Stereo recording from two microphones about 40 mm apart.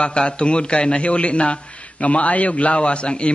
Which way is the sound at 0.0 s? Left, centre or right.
Left.